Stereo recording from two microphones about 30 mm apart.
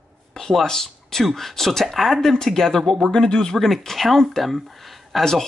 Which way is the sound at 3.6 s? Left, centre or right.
Centre.